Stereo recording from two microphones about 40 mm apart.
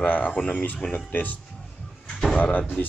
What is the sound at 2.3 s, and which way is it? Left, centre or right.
Speech, left.